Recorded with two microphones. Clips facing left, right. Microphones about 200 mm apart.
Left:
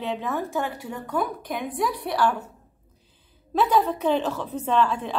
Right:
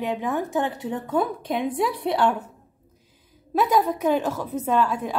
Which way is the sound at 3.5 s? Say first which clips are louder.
Right 1 dB; 10° right (ahead or behind).